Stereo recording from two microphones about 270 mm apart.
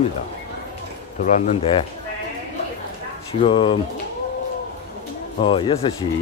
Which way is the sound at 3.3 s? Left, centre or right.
Centre.